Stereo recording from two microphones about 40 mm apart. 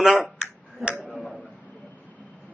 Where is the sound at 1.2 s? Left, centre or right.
Left.